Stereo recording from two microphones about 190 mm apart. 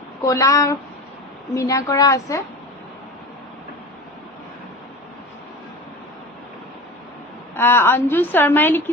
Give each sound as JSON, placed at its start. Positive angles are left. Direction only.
{"t": 0.2, "sound": "a woman's voice", "side_deg": 15}
{"t": 7.5, "sound": "a woman's voice", "side_deg": 10}